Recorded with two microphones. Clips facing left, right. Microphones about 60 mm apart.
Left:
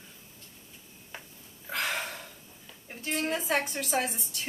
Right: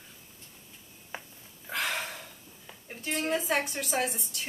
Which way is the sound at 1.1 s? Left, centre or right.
Right.